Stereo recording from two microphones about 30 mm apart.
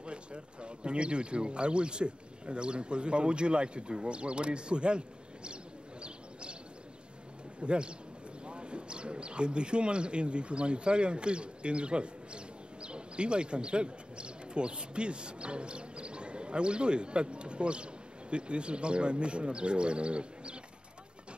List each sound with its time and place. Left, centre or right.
0.0 s speech: right
7.6 s speech: right